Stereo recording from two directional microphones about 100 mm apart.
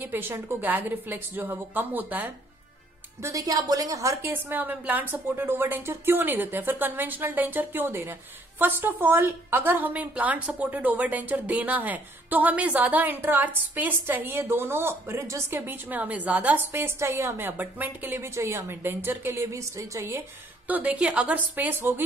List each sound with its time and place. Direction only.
0.0 s a woman's voice: 20° right (ahead or behind)
3.2 s a woman's voice: 35° right (ahead or behind)
4.3 s a woman's voice: 20° right (ahead or behind)
20.7 s a woman's voice: 15° right (ahead or behind)